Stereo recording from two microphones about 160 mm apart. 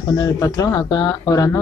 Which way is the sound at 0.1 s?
25° left (ahead or behind).